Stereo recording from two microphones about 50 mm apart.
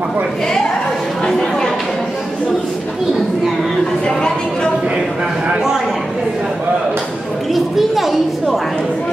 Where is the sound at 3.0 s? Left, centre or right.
Centre.